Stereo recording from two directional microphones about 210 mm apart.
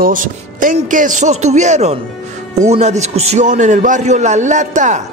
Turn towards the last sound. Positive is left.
turn(degrees=-35)  # may be behind; listen again after turning